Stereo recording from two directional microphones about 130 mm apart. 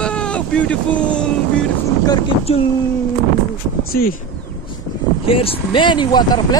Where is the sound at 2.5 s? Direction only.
50° left (ahead or behind).